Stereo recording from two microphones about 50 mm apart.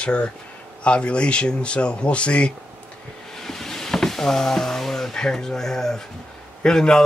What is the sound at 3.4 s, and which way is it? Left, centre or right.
Speech, centre.